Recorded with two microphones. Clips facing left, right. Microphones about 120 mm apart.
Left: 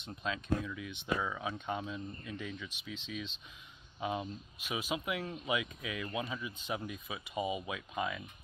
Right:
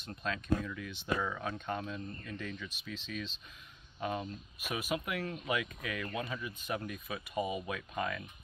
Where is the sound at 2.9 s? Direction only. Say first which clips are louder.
Right 1 dB; 20° left (ahead or behind).